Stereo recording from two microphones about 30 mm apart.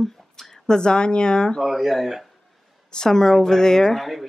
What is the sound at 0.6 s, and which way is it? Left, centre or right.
Speech, left.